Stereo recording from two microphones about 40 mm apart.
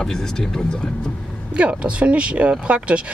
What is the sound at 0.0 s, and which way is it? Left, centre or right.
Speech, centre.